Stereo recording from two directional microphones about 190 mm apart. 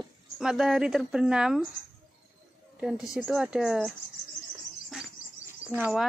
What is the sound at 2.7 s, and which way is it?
A woman's voice, 5° right (ahead or behind).